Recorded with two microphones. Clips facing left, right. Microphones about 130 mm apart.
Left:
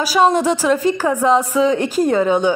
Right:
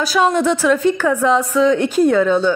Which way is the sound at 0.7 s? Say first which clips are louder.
Right 2 dB; centre (ahead or behind).